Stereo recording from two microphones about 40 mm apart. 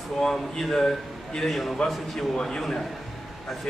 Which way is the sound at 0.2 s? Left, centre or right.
Centre.